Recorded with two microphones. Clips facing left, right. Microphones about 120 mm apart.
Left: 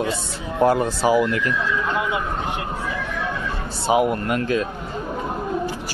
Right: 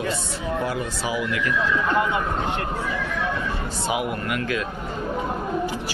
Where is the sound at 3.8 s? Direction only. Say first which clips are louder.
Left 8 dB; 40° left (ahead or behind).